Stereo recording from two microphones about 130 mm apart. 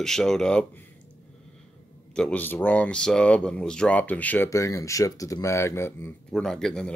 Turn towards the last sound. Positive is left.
turn(degrees=5)  # may be behind; listen again after turning